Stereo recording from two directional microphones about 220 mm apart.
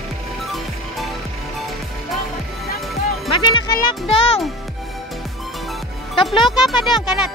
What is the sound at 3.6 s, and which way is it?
Music, 20° left (ahead or behind).